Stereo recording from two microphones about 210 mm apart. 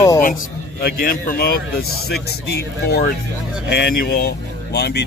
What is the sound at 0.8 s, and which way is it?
Speech, 45° left (ahead or behind).